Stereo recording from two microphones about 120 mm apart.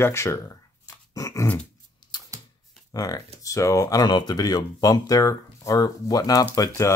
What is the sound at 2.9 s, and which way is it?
Speech, 30° left (ahead or behind).